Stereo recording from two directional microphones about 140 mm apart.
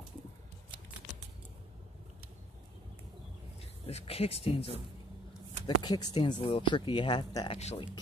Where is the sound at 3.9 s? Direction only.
45° left (ahead or behind).